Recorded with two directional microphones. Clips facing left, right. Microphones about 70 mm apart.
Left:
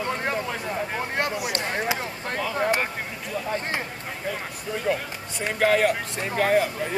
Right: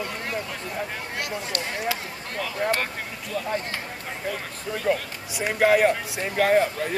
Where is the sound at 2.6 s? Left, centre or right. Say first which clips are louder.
Left 1 dB; centre.